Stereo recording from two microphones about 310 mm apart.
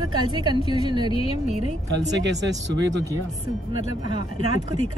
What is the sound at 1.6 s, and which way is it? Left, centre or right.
Speech, right.